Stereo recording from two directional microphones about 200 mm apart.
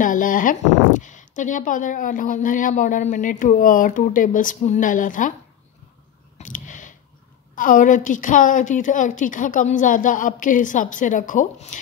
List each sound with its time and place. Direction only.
0.0 s speech: 40° left (ahead or behind)
6.3 s clicking: 40° left (ahead or behind)
7.5 s speech: 40° left (ahead or behind)